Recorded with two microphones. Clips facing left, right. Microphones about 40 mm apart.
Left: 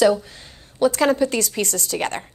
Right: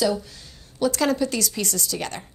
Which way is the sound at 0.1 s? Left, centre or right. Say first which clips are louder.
Left 5 dB; left.